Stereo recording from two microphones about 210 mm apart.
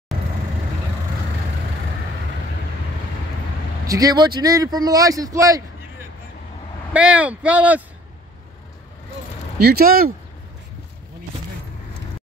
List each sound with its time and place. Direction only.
3.8 s speech: 15° right (ahead or behind)
9.6 s speech: 50° right (ahead or behind)